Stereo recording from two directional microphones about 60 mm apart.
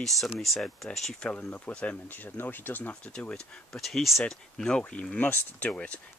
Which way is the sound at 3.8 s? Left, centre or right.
Centre.